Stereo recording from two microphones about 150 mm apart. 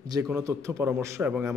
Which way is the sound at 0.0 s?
25° right (ahead or behind).